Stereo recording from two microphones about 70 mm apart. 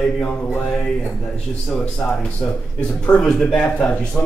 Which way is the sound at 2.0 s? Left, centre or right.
Centre.